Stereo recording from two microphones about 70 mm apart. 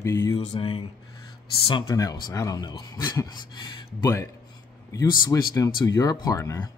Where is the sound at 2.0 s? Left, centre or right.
Left.